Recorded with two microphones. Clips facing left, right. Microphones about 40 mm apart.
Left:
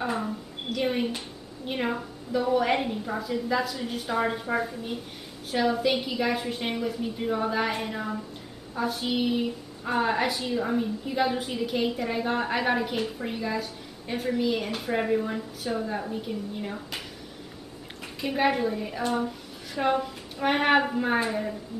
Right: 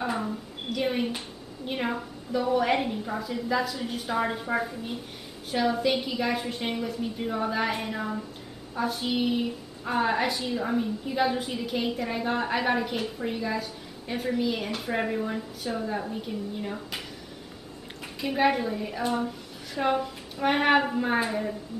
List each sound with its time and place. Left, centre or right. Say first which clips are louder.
0.0 s a woman's voice: even; centre
18.2 s a woman's voice: even; centre